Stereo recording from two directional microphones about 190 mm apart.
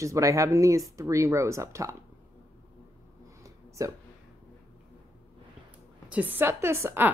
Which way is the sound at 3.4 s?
15° right (ahead or behind).